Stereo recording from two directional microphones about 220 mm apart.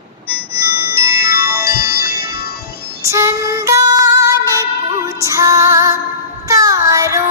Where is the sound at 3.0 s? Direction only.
15° right (ahead or behind).